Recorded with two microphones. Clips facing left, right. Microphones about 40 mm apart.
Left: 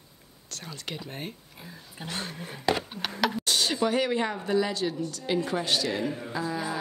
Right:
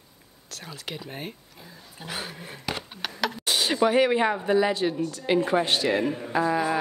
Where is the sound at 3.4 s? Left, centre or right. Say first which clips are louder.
Right 8 dB; centre.